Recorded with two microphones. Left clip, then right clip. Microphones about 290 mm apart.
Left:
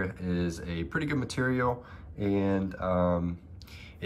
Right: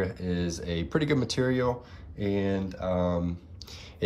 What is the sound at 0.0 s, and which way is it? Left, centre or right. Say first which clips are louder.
Speech: right 2 dB; centre.